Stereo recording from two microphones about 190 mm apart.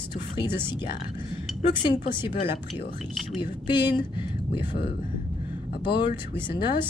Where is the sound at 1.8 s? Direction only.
25° left (ahead or behind).